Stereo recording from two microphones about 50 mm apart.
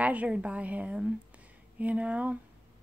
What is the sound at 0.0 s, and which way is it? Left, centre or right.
A woman's voice, right.